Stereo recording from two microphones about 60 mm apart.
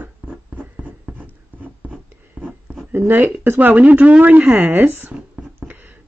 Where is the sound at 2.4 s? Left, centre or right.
Right.